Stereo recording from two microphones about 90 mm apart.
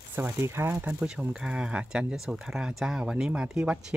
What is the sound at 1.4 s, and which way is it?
Speech, 10° right (ahead or behind).